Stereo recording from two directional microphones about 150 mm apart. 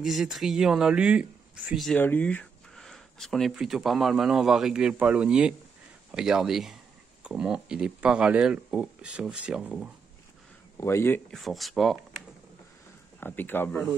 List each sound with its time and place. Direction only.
0.0 s speech: centre (ahead or behind)
2.0 s speech: 10° left (ahead or behind); by 9.8 s 5° right (ahead or behind)
10.8 s speech: 15° left (ahead or behind)
11.2 s speech: centre (ahead or behind)
13.2 s speech: 15° left (ahead or behind)